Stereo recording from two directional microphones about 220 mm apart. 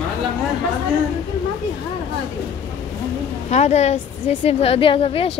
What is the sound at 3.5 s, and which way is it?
A woman's voice, 30° left (ahead or behind).